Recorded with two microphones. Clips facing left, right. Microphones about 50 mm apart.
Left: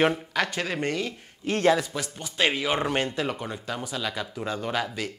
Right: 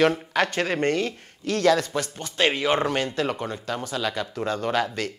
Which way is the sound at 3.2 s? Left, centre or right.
Centre.